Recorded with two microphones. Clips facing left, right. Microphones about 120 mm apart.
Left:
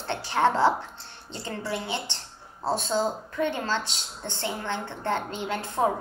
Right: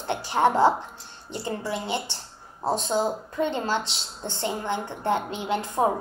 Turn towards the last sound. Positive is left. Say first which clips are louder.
# right 2 dB
turn(degrees=-15)  # may be behind; listen again after turning